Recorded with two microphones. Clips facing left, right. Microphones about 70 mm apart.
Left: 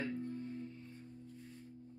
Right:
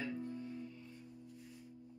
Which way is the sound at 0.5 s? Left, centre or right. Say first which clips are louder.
Left 1 dB; left.